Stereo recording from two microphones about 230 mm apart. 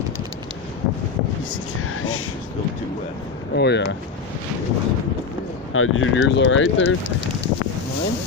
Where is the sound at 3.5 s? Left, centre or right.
Left.